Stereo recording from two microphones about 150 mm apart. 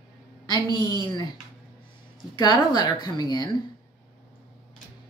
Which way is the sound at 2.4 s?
25° left (ahead or behind).